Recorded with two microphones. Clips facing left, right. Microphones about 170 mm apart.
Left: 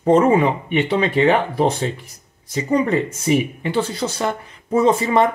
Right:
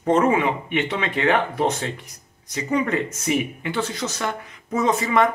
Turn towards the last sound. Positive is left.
turn(degrees=30)  # may be behind; listen again after turning